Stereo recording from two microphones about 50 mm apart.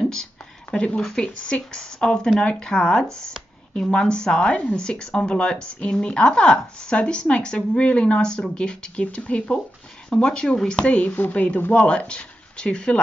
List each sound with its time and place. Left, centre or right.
0.7 s speech: left